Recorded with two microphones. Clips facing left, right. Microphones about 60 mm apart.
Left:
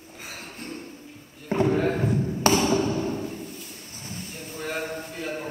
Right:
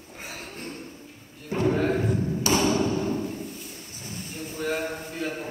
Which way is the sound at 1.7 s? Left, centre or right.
Centre.